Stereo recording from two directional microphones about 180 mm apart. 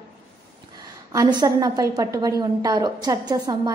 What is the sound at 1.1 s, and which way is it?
A woman's voice, 20° right (ahead or behind).